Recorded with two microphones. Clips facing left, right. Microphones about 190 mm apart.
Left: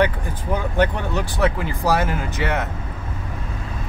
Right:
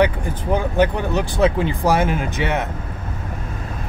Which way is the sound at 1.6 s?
20° right (ahead or behind).